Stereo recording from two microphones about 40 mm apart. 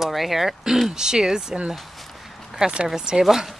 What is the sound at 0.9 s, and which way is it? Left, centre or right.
Speech, centre.